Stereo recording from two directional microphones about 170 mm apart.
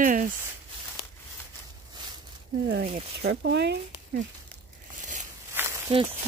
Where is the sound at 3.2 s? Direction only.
80° right.